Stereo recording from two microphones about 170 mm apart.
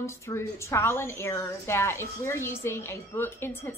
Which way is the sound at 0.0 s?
15° left (ahead or behind).